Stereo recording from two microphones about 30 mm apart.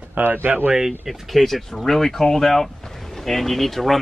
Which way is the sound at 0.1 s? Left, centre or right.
Right.